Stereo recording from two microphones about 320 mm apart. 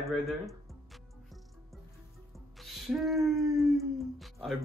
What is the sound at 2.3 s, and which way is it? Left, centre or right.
Speech, centre.